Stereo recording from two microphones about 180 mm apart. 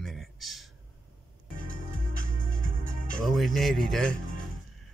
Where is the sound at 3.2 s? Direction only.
Centre (ahead or behind).